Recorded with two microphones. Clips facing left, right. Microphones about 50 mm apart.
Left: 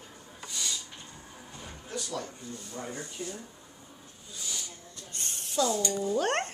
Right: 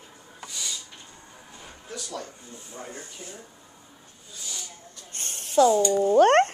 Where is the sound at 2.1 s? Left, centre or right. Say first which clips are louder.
Even; right.